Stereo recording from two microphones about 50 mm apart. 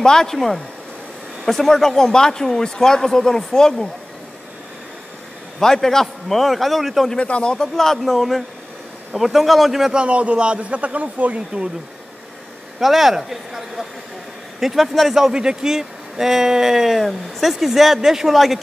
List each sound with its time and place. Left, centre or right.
0.0 s speech: centre
5.6 s a man's voice: centre
7.2 s speech: left
7.5 s a man's voice: centre
9.9 s speech: right
12.7 s a man's voice: centre